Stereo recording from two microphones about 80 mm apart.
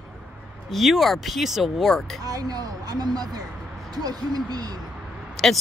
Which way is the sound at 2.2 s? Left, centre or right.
Right.